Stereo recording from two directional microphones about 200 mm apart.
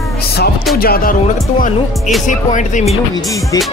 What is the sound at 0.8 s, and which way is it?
Speech, 45° left (ahead or behind).